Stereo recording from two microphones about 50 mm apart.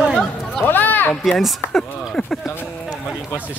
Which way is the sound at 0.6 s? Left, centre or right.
Left.